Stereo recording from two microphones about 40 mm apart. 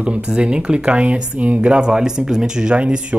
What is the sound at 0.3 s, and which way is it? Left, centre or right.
Speech, right.